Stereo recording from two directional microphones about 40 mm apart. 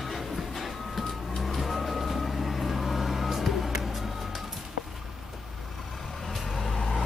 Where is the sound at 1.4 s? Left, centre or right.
Centre.